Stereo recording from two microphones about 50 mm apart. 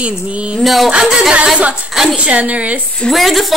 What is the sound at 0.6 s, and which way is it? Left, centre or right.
Speech, centre.